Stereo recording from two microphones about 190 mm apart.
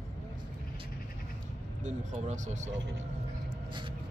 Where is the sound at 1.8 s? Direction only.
40° right (ahead or behind).